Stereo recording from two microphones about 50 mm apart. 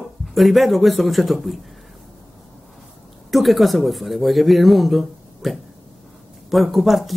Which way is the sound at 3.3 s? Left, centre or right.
Centre.